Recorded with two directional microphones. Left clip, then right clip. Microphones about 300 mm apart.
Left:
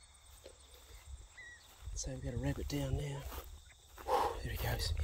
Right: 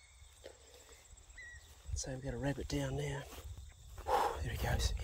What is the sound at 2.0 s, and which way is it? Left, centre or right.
Speech, centre.